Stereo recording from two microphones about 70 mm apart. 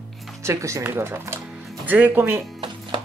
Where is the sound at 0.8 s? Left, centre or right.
Right.